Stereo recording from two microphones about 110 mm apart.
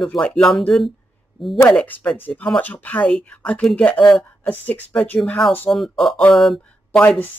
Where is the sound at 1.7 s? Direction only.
15° left (ahead or behind).